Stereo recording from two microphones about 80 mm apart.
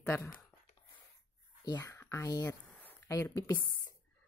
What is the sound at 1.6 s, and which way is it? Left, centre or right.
Speech, left.